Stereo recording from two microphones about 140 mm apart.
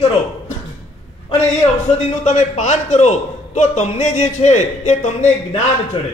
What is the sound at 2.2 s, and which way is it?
A man's voice, 55° left (ahead or behind).